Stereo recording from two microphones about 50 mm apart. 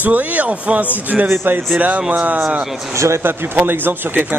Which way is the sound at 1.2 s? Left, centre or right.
Right.